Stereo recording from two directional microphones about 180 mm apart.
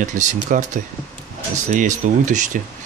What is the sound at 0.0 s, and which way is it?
Speech, 45° right (ahead or behind).